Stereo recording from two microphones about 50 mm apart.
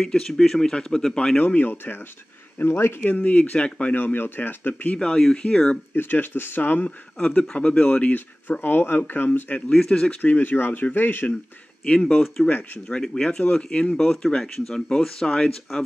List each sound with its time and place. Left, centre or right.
0.0 s speech: centre
1.4 s speech: left
3.2 s speech: left
3.9 s speech: left
4.9 s speech: centre
5.9 s speech: left
7.2 s speech: left
8.5 s speech: left
9.7 s speech: centre
10.2 s speech: left
12.4 s speech: left
12.8 s speech: centre